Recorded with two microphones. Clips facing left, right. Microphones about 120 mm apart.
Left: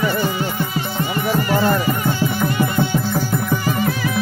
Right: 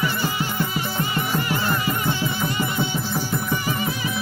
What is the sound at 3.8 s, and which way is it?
Music, 70° left (ahead or behind).